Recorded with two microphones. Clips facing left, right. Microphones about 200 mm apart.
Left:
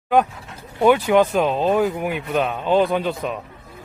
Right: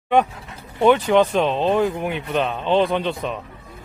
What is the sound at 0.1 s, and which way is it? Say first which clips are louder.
Speech: even; centre (ahead or behind).